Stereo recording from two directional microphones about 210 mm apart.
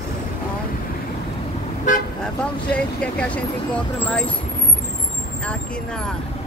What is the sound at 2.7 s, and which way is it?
Speech, 5° left (ahead or behind).